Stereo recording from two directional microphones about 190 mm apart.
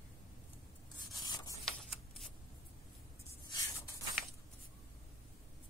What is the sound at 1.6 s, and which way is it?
Shuffling cards, centre (ahead or behind).